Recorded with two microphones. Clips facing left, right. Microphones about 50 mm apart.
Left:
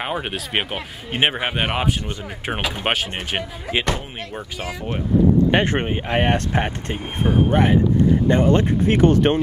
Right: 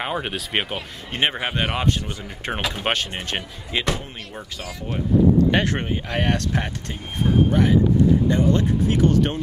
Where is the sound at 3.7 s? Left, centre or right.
Left.